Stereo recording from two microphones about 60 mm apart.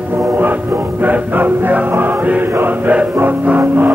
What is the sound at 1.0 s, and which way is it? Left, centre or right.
Music, right.